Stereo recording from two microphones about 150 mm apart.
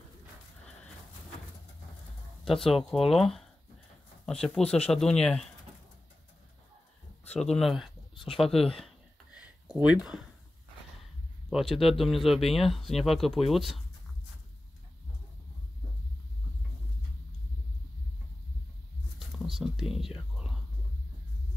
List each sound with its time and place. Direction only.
2.4 s speech: centre (ahead or behind)
7.2 s speech: 5° left (ahead or behind)
8.5 s speech: 40° left (ahead or behind)
8.8 s a sound: 5° right (ahead or behind)
9.8 s speech: 5° right (ahead or behind)
11.5 s speech: centre (ahead or behind)
19.1 s a sound: centre (ahead or behind)